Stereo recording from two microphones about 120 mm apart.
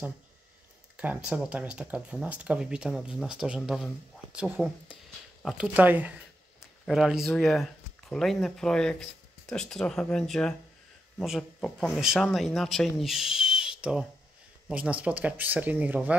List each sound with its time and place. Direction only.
0.9 s speech: 10° right (ahead or behind)
5.7 s speech: 15° right (ahead or behind)